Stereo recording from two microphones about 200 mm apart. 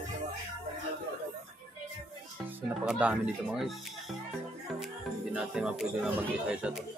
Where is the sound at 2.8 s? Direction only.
5° right (ahead or behind).